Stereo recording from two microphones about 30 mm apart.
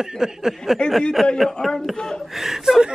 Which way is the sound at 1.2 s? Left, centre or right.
Centre.